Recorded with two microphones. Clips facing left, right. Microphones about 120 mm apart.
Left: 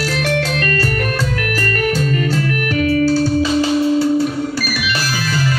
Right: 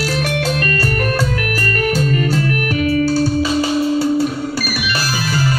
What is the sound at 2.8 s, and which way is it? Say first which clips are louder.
Music: left 2 dB; 45° left (ahead or behind).